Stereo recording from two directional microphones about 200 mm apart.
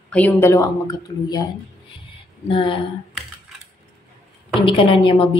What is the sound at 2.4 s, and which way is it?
Speech, 25° left (ahead or behind).